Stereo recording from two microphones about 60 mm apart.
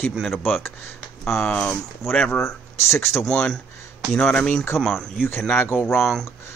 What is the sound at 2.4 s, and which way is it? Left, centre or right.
Speech, left.